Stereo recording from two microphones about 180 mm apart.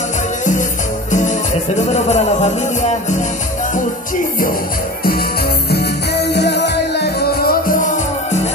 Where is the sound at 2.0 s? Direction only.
35° left (ahead or behind).